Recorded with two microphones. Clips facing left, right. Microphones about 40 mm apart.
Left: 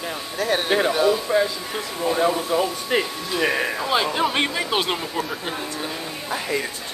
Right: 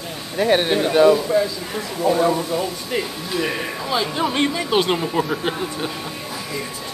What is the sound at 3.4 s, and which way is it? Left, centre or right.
Speech, centre.